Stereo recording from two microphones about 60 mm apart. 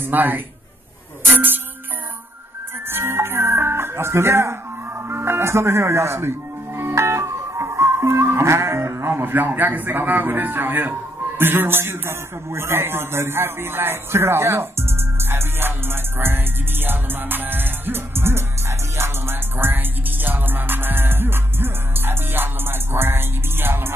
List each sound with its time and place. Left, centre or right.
0.0 s a man's voice: right
1.2 s music: right
2.9 s music: right